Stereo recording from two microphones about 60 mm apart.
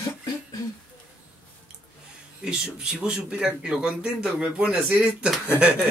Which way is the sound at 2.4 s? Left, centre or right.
Centre.